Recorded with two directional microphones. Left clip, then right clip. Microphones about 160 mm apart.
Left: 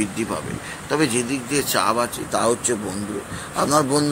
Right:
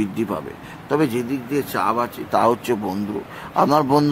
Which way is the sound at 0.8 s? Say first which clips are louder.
Right 1 dB; 10° right (ahead or behind).